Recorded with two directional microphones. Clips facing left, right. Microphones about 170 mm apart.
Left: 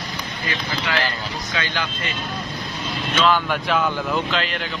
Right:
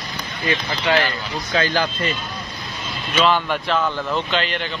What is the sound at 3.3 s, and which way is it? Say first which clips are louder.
Speech: even; 5° left (ahead or behind).